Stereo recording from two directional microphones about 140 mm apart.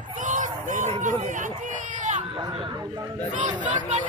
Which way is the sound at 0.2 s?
65° right (ahead or behind).